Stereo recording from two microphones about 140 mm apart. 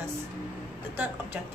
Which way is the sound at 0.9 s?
15° right (ahead or behind).